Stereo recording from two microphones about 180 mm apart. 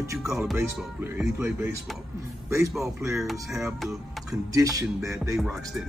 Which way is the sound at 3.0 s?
15° right (ahead or behind).